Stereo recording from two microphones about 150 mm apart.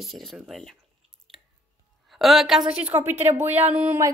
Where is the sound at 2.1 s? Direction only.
Centre (ahead or behind).